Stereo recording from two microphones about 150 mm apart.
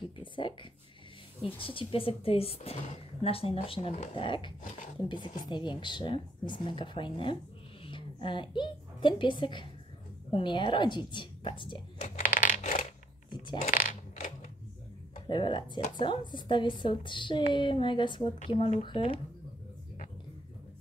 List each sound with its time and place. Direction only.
0.2 s a child's voice: 35° left (ahead or behind)
12.4 s coin: 65° left (ahead or behind)
13.3 s speech: 30° left (ahead or behind)
13.7 s coin: 60° left (ahead or behind)
15.2 s speech: 35° left (ahead or behind)